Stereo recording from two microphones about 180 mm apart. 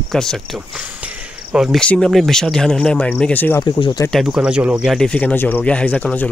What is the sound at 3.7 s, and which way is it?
Speech, 25° left (ahead or behind).